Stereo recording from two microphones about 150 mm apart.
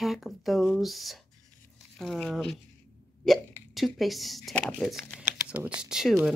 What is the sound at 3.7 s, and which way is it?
Speech, centre (ahead or behind).